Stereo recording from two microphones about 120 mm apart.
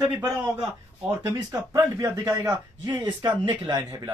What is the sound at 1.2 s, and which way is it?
A man's voice, 25° right (ahead or behind).